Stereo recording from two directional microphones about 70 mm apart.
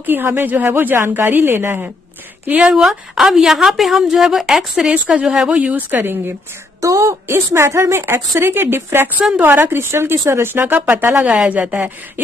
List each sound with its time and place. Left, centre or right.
0.0 s a woman's voice: right
2.6 s a woman's voice: centre
5.8 s a woman's voice: right
6.8 s a woman's voice: right
11.1 s a woman's voice: centre